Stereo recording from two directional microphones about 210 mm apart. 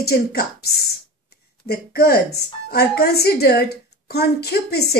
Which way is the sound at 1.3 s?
50° left (ahead or behind).